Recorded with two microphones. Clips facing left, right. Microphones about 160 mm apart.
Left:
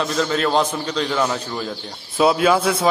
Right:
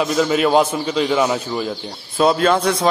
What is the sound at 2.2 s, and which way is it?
Speech, 5° left (ahead or behind).